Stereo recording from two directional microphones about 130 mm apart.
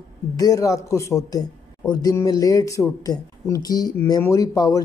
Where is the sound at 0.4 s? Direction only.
25° left (ahead or behind).